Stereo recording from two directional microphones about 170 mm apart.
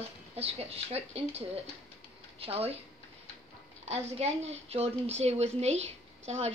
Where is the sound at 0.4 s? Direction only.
35° right (ahead or behind).